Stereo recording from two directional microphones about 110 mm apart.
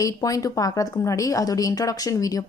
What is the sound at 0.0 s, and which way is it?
A woman's voice, 30° left (ahead or behind).